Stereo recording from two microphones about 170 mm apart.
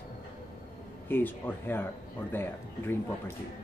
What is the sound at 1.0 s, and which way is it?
Speech, 10° left (ahead or behind).